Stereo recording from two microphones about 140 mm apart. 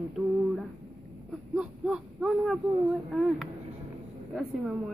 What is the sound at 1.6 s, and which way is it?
Speech, 5° right (ahead or behind).